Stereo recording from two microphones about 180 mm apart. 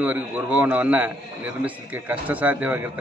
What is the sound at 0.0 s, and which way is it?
A man's voice, 10° right (ahead or behind).